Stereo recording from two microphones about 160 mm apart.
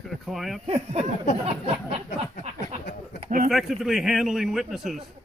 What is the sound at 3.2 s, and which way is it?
Speech, 60° right (ahead or behind).